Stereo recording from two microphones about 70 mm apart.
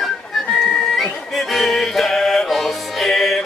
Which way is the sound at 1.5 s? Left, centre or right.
Centre.